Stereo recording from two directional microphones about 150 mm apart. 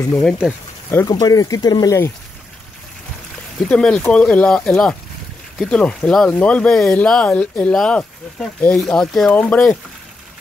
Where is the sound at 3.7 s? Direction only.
5° left (ahead or behind).